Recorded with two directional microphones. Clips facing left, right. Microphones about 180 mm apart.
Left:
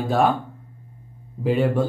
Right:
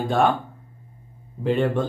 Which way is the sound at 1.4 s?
5° left (ahead or behind).